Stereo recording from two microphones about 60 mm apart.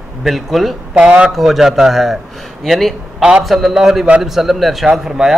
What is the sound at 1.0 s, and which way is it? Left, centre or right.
Speech, centre.